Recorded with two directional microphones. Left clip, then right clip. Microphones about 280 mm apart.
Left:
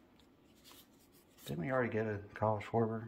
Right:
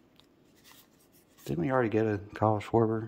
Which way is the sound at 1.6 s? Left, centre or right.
Right.